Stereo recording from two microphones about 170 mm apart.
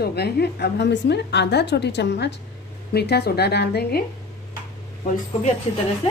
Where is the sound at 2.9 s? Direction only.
70° left (ahead or behind).